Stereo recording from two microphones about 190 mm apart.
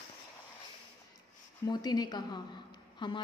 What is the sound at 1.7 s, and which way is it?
A woman's voice, 20° left (ahead or behind).